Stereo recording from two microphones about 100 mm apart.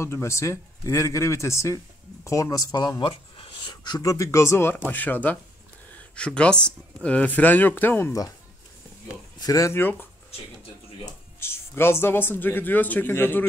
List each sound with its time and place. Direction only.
0.0 s a man's voice: 30° left (ahead or behind); by 3.1 s 45° left (ahead or behind)
3.1 s a sound: 65° left (ahead or behind)
4.0 s a man's voice: 35° left (ahead or behind)
9.4 s speech: 35° left (ahead or behind)
9.8 s a man's voice: 20° left (ahead or behind)
11.3 s a man's voice: 25° left (ahead or behind)